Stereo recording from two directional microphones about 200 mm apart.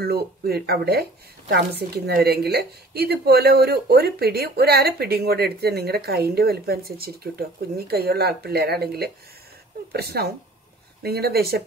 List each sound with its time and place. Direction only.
0.0 s a woman's voice: 50° right (ahead or behind)